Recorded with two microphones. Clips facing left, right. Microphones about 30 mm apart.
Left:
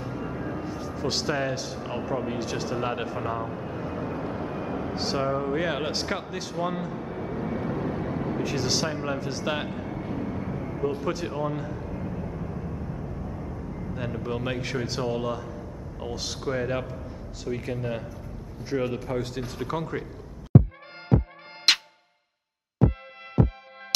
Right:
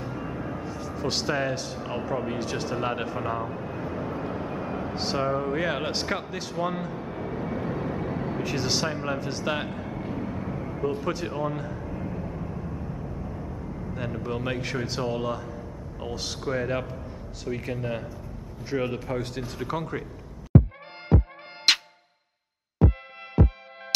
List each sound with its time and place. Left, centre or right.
0.0 s music: centre
0.4 s speech: centre
11.9 s vehicle: centre
17.5 s speech: centre
21.1 s music: centre
21.7 s music: centre
22.8 s music: centre